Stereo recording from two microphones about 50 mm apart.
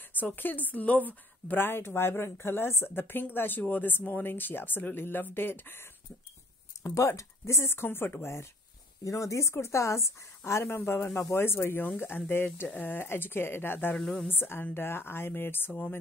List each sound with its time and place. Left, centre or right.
0.2 s a woman's voice: left
6.8 s speech: left
9.0 s speech: left
12.8 s a woman's voice: left
13.9 s speech: centre
14.2 s a woman's voice: left